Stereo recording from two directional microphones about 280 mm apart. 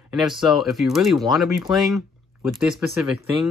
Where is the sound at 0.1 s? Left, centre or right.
Centre.